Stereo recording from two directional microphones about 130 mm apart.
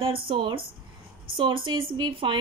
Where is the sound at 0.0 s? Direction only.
45° right (ahead or behind).